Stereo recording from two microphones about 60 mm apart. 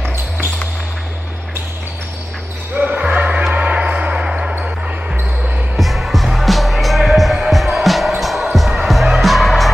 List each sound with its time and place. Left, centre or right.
2.7 s basketball bounce: right
3.5 s music: centre
5.8 s music: centre